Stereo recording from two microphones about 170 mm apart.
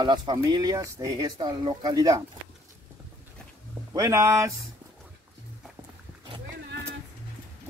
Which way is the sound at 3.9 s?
20° right (ahead or behind).